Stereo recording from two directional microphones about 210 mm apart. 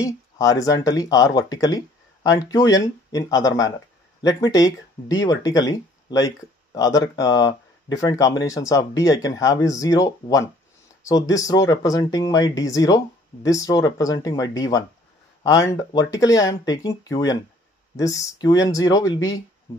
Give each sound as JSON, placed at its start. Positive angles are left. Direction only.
{"t": 0.0, "sound": "speech", "side_deg": 15}